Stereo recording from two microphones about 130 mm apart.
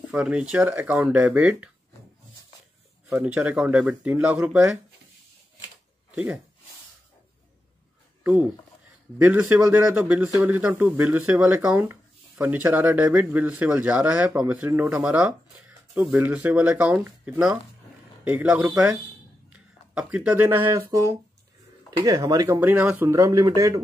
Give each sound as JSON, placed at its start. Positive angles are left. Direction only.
{"t": 0.1, "sound": "speech", "side_deg": -5}
{"t": 3.2, "sound": "speech", "side_deg": -10}
{"t": 6.1, "sound": "speech", "side_deg": -5}
{"t": 8.2, "sound": "speech", "side_deg": -10}
{"t": 22.0, "sound": "speech", "side_deg": -25}
{"t": 23.0, "sound": "speech", "side_deg": -25}